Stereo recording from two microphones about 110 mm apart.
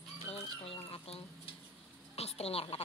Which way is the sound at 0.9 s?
60° left (ahead or behind).